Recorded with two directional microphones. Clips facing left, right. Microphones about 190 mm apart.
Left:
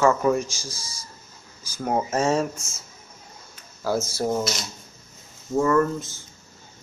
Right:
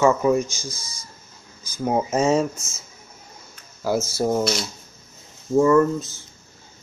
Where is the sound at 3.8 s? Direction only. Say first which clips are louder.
Right 2 dB; 10° right (ahead or behind).